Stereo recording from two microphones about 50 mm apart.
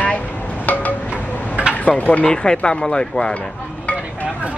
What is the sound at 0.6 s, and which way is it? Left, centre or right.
Wind chime, left.